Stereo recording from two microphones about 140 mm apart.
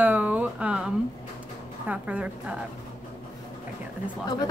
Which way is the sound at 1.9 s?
10° right (ahead or behind).